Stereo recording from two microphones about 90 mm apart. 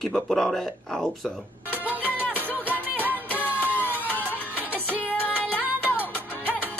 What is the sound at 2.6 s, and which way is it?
Music, 20° right (ahead or behind).